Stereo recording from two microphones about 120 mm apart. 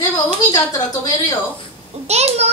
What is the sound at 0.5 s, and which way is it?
Speech, 25° left (ahead or behind).